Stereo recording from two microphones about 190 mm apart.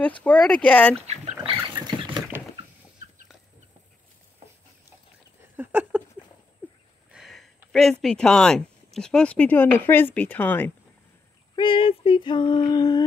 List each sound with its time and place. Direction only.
0.2 s speech: 5° left (ahead or behind)
1.0 s dog: 30° right (ahead or behind)
2.3 s a sound: 10° right (ahead or behind)
5.4 s a sound: 10° right (ahead or behind)
7.1 s speech: 5° right (ahead or behind)
11.5 s female singing: 25° left (ahead or behind)